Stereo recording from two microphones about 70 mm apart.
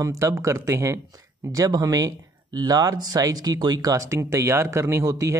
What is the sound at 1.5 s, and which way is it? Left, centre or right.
Speech, right.